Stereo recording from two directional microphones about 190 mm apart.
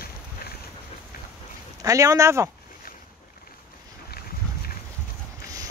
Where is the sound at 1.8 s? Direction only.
15° right (ahead or behind).